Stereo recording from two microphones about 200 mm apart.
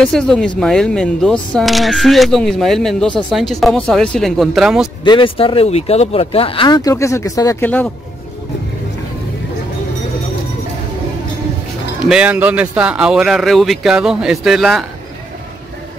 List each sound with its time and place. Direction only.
0.0 s speech: 5° left (ahead or behind)
5.0 s speech: 25° left (ahead or behind); by 7.9 s 10° left (ahead or behind)
12.1 s speech: 5° right (ahead or behind)